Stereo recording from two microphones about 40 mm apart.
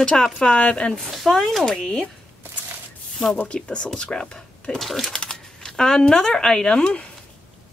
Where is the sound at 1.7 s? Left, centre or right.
Centre.